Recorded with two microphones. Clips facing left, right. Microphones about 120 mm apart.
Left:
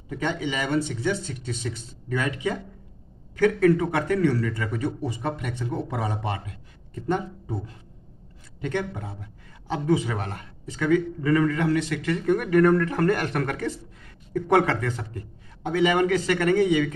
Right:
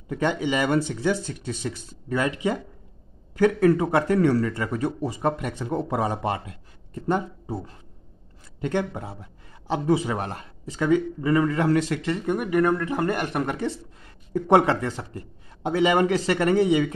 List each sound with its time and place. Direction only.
0.1 s a man's voice: 40° right (ahead or behind)
2.0 s a man's voice: 30° right (ahead or behind)
8.5 s a man's voice: 35° right (ahead or behind)
12.0 s a man's voice: 20° right (ahead or behind)